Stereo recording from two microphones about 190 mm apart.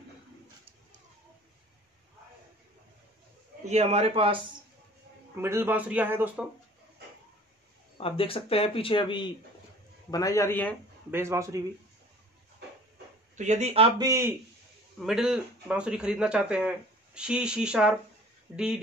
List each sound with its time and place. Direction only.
3.6 s a man's voice: 35° right (ahead or behind)
5.3 s a man's voice: 15° right (ahead or behind)
8.0 s a man's voice: 30° left (ahead or behind); by 10.8 s 10° left (ahead or behind)
11.1 s a man's voice: 15° right (ahead or behind)
13.4 s a man's voice: 35° right (ahead or behind); by 14.3 s 15° right (ahead or behind)
15.0 s speech: centre (ahead or behind)